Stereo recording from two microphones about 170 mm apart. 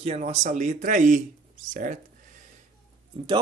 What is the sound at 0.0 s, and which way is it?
Speech, 40° right (ahead or behind).